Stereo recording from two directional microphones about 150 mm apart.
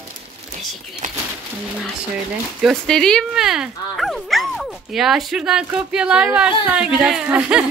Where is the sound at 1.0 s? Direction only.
55° right (ahead or behind).